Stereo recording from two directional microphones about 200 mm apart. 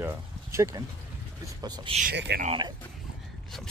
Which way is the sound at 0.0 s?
15° right (ahead or behind).